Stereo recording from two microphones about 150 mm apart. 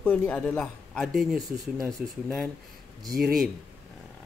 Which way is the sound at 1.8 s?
20° right (ahead or behind).